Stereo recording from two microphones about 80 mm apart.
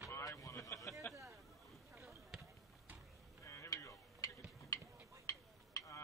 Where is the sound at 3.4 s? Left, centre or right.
Left.